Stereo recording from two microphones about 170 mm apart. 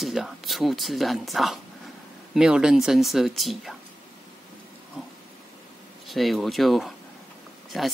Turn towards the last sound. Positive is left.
turn(degrees=0)  # may be behind; listen again after turning